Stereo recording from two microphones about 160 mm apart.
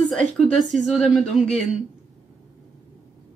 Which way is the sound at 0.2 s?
50° right (ahead or behind).